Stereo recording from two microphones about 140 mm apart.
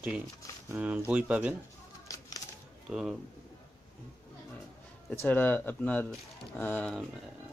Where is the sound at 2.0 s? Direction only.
25° left (ahead or behind).